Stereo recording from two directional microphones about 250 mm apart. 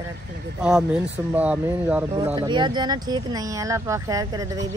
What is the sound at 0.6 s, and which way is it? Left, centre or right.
Speech, centre.